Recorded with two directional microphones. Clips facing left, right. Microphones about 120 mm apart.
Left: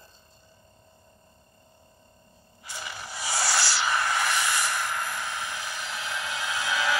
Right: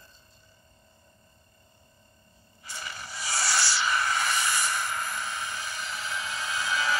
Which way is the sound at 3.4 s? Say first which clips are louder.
Left 1 dB; 90° left.